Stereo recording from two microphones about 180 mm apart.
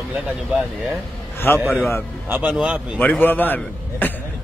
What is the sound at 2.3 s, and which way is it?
Speech, 10° right (ahead or behind).